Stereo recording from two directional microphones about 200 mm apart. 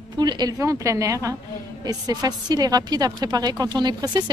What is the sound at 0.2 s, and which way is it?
A woman's voice, 20° right (ahead or behind).